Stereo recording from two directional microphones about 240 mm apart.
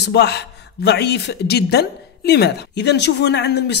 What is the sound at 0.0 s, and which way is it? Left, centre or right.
Speech, left.